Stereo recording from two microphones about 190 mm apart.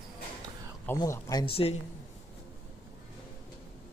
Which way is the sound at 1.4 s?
30° left (ahead or behind).